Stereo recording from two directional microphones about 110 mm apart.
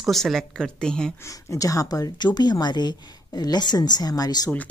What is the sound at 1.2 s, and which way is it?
A woman's voice, 30° left (ahead or behind).